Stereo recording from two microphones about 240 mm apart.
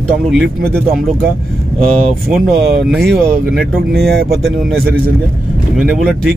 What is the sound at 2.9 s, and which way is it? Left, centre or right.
Speech, centre.